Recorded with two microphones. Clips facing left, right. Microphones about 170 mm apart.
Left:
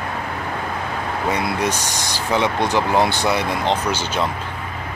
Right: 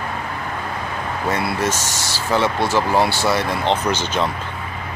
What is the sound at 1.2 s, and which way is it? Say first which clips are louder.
Speech: even; 15° left (ahead or behind).